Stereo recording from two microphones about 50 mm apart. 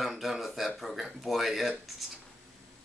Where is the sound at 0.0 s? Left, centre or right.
Centre.